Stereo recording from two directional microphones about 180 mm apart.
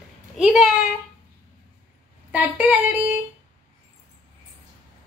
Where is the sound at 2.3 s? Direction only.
10° right (ahead or behind).